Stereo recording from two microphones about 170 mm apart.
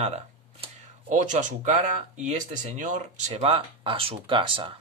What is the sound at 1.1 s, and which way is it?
Speech, 45° right (ahead or behind).